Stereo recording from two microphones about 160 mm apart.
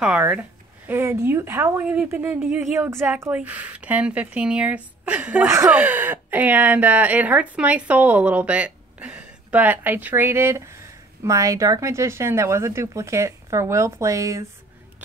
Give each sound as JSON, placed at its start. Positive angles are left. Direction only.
{"t": 0.0, "sound": "speech", "side_deg": -5}